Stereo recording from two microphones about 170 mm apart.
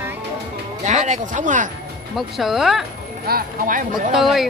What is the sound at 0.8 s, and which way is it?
Speech, 45° right (ahead or behind).